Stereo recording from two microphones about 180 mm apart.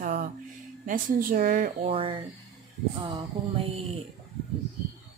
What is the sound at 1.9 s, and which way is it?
Speech, 30° right (ahead or behind).